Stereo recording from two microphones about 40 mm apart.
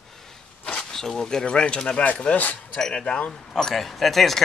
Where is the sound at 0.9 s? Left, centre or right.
Centre.